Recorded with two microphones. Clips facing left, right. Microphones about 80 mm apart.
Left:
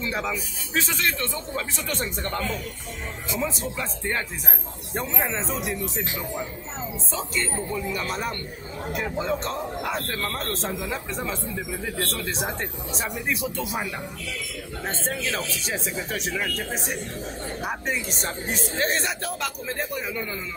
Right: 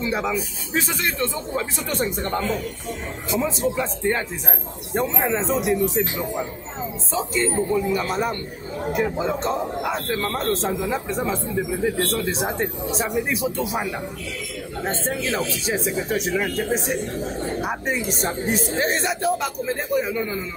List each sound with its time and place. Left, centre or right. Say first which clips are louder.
0.0 s a man's voice: right 5 dB; centre
4.9 s speech: right 6 dB; right
15.1 s a man's voice: right 4 dB; right